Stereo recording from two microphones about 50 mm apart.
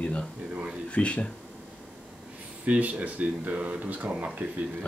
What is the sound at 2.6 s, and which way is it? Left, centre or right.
Speech, right.